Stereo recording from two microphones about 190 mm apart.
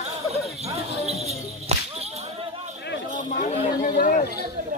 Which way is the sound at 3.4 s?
45° left (ahead or behind).